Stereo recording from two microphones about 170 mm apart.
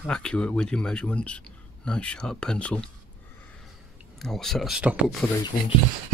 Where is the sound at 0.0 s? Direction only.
5° left (ahead or behind).